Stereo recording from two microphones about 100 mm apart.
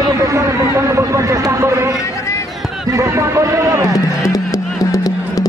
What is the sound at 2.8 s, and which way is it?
A man's voice, 30° right (ahead or behind).